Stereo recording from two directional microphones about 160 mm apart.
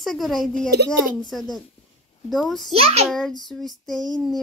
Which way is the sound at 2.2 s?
Centre (ahead or behind).